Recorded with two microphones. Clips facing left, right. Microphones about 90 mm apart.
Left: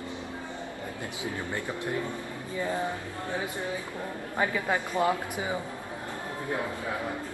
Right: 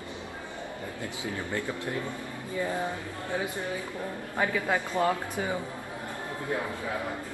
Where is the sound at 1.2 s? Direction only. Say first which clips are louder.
Right 1 dB; 20° left (ahead or behind).